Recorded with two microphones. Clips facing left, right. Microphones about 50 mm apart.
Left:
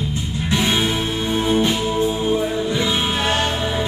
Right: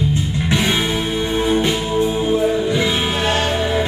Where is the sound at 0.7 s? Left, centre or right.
Centre.